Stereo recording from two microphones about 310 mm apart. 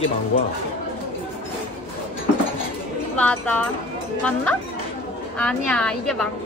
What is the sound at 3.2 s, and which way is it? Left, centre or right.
A woman's voice, centre.